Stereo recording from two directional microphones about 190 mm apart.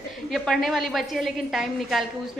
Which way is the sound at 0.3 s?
Centre (ahead or behind).